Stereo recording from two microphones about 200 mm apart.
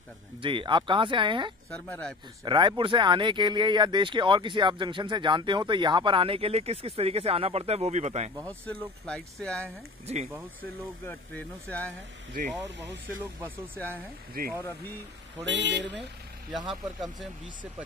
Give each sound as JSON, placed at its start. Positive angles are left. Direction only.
{"t": 0.4, "sound": "speech", "side_deg": -25}
{"t": 1.7, "sound": "speech", "side_deg": 5}
{"t": 2.4, "sound": "speech", "side_deg": -25}
{"t": 8.5, "sound": "speech", "side_deg": 5}
{"t": 10.1, "sound": "speech", "side_deg": -30}
{"t": 11.1, "sound": "speech", "side_deg": 10}
{"t": 14.4, "sound": "speech", "side_deg": -45}
{"t": 15.4, "sound": "speech", "side_deg": -60}
{"t": 16.6, "sound": "speech", "side_deg": 0}